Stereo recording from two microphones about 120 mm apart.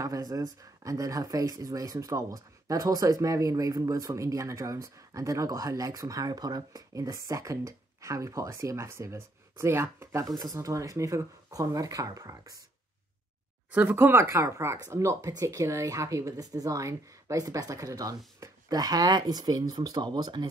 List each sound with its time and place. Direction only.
0.0 s speech: 30° right (ahead or behind)
13.7 s speech: 15° right (ahead or behind); by 20.4 s 35° right (ahead or behind)